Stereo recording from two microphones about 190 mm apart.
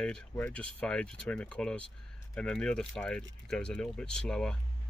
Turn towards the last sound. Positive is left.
turn(degrees=5)  # may be behind; listen again after turning